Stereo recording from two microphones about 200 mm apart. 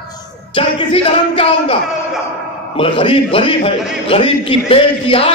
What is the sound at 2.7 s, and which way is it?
A man's voice, 25° left (ahead or behind).